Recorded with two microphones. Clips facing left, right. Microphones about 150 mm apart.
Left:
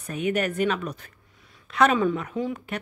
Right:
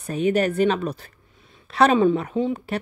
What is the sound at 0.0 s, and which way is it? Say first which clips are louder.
Speech: right 5 dB; 30° right (ahead or behind).